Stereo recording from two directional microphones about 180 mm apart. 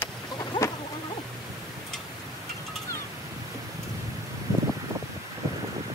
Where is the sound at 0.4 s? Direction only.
25° left (ahead or behind).